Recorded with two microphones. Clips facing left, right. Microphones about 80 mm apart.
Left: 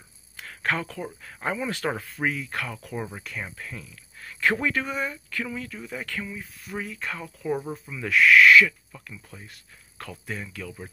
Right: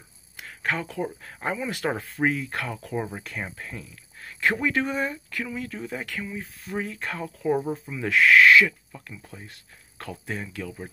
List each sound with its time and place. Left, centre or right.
0.4 s a sound: centre
0.8 s speech: right
5.3 s speech: centre
5.6 s speech: right
6.3 s speech: right